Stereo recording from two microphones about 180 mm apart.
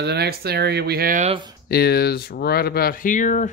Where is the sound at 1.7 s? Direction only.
60° left (ahead or behind); by 3.5 s 45° left (ahead or behind).